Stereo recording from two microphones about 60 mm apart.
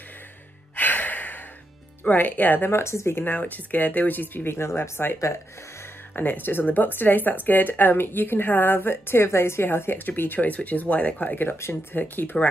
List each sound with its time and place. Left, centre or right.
0.7 s music: left
2.0 s speech: left
2.7 s speech: left
3.3 s speech: left
6.1 s speech: left